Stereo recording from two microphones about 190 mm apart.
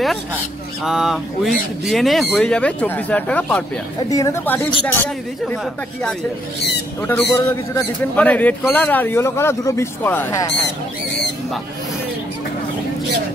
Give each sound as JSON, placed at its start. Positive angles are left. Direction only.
{"t": 0.8, "sound": "speech", "side_deg": 0}
{"t": 7.0, "sound": "speech", "side_deg": 10}